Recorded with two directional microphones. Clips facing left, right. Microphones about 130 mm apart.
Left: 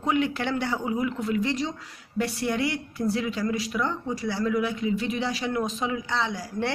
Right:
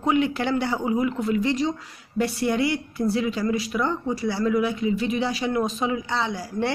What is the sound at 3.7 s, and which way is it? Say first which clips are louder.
Speech: right 3 dB; 30° right (ahead or behind).